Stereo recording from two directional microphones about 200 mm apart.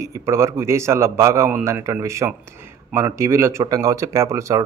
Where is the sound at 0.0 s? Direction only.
15° right (ahead or behind).